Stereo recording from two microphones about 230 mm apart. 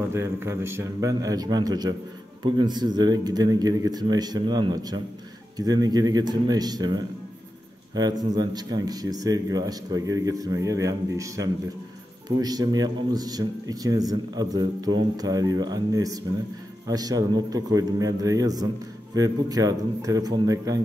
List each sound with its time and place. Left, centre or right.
0.1 s speech: centre